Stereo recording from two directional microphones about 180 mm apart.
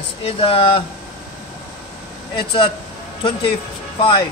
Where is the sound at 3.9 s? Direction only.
30° left (ahead or behind).